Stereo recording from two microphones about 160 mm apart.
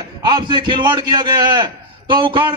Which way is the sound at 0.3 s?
30° right (ahead or behind).